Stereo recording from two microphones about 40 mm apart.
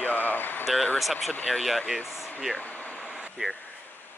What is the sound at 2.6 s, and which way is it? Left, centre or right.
Vehicle, left.